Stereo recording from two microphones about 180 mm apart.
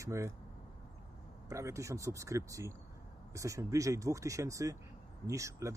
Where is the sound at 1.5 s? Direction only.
15° right (ahead or behind).